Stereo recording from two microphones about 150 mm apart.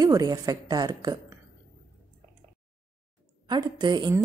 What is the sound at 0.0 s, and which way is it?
A woman's voice, 25° right (ahead or behind).